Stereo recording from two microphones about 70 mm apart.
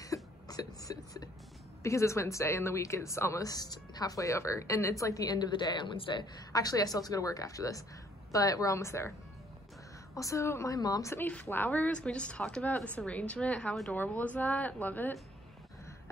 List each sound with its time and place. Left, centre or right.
0.0 s a sound: left
1.8 s speech: left
3.4 s speech: left
10.1 s speech: left
10.8 s speech: left
11.1 s a woman's voice: left